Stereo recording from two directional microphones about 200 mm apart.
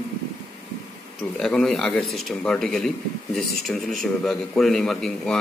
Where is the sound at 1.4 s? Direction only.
Centre (ahead or behind).